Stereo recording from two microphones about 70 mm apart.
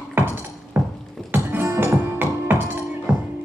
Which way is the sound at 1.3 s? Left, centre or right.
Right.